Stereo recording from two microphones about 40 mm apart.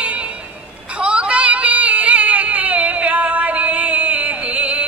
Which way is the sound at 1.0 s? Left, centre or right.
Right.